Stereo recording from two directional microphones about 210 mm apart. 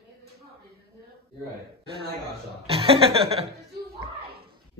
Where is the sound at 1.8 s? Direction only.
25° right (ahead or behind).